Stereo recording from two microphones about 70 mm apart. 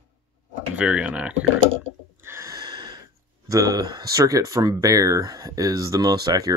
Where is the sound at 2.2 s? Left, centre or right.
Right.